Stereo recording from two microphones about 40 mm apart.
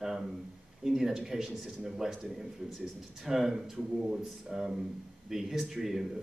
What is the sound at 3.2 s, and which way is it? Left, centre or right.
A man's voice, centre.